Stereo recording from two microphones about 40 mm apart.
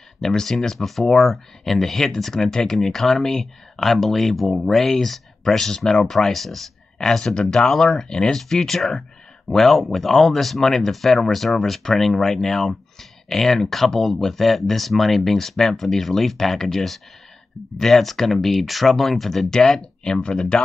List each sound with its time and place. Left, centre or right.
0.2 s speech: centre
19.6 s speech: centre